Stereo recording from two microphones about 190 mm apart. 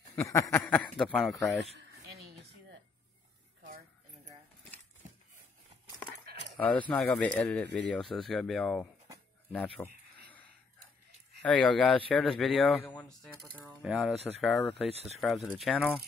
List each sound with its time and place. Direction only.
0.1 s speech: 15° left (ahead or behind)
1.8 s a sound: 55° right (ahead or behind)
6.5 s a sound: 5° left (ahead or behind)
6.9 s speech: 5° left (ahead or behind)
9.8 s speech: 15° left (ahead or behind)
11.4 s speech: 5° left (ahead or behind)